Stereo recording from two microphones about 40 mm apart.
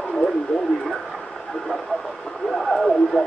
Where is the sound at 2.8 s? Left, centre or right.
Centre.